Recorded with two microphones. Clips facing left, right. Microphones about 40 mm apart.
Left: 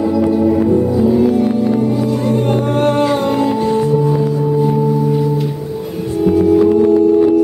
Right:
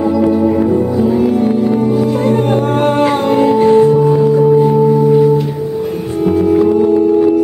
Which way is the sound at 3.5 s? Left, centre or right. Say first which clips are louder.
Right 6 dB; right.